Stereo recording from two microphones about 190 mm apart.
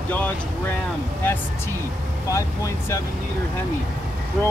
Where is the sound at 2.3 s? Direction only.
15° left (ahead or behind).